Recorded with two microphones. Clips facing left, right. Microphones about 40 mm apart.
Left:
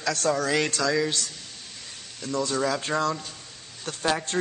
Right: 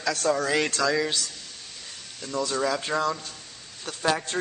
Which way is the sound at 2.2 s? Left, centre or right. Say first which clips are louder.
Left 1 dB; centre.